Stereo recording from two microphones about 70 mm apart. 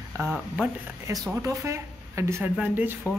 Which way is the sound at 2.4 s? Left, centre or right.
Right.